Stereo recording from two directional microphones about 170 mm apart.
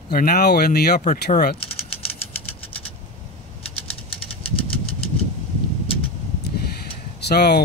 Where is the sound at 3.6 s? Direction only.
35° left (ahead or behind).